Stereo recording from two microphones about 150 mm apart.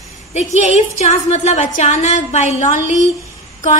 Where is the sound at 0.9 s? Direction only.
50° left (ahead or behind).